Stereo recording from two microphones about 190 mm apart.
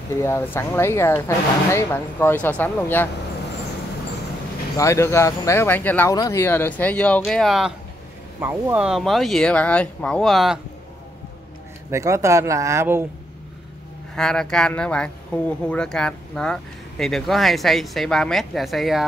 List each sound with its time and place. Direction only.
0.2 s speech: 15° left (ahead or behind)
4.7 s speech: 15° left (ahead or behind); by 7.7 s centre (ahead or behind)
8.4 s speech: 10° right (ahead or behind)
11.9 s speech: 15° right (ahead or behind)
14.1 s speech: 5° left (ahead or behind)